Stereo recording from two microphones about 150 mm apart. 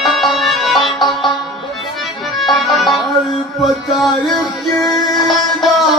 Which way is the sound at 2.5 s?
Centre (ahead or behind).